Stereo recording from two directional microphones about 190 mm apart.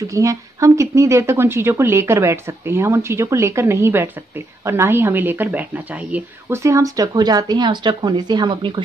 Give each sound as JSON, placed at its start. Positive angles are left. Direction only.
{"t": 0.0, "sound": "speech", "side_deg": -15}